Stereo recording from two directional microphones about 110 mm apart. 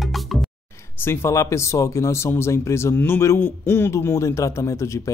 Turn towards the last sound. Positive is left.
turn(degrees=25)  # may be behind; listen again after turning